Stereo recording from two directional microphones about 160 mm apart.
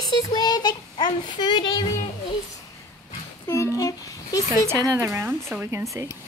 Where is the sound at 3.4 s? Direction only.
15° left (ahead or behind).